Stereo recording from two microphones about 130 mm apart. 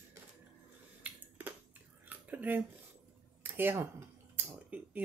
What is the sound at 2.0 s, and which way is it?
Squish, 15° right (ahead or behind).